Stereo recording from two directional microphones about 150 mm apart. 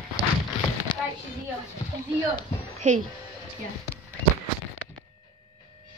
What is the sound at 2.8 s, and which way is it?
Speech, 55° right (ahead or behind).